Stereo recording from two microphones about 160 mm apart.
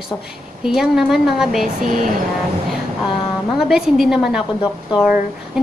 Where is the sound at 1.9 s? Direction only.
60° right (ahead or behind).